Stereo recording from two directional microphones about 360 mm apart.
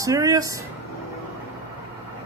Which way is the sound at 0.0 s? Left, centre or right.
Centre.